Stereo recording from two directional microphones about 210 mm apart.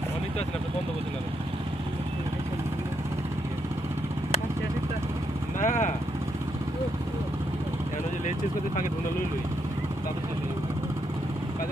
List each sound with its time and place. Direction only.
5.6 s speech: 35° left (ahead or behind)